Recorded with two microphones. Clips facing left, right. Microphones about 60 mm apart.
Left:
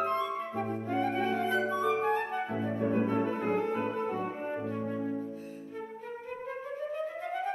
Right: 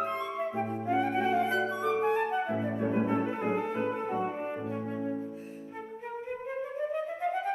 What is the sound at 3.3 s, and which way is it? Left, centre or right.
Music, centre.